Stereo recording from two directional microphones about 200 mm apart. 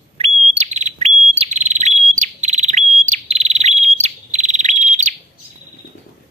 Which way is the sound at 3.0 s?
35° right (ahead or behind).